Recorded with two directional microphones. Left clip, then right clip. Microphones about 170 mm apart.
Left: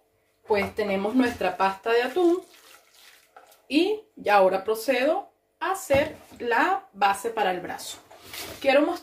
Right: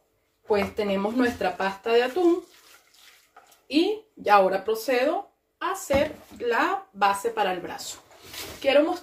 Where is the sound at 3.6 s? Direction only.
15° left (ahead or behind).